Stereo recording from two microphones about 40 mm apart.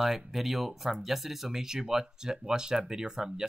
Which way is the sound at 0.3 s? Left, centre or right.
Centre.